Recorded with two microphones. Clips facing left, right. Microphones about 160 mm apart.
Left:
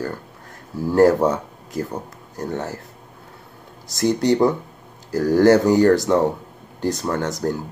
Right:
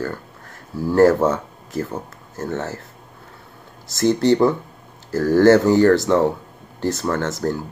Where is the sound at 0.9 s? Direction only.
15° left (ahead or behind).